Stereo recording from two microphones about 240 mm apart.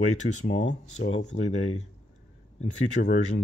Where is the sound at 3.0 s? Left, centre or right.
Left.